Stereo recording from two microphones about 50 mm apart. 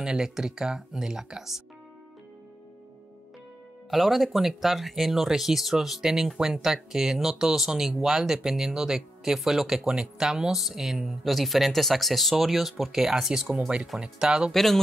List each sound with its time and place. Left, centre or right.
0.0 s speech: centre
3.9 s speech: centre
14.5 s speech: centre